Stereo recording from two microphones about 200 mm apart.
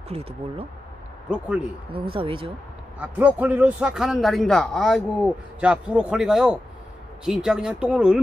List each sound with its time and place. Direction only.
0.1 s speech: 30° right (ahead or behind)
2.0 s speech: 25° right (ahead or behind)
3.0 s a man's voice: 10° right (ahead or behind)